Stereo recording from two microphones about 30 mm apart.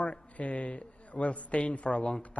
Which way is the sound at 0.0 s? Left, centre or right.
Left.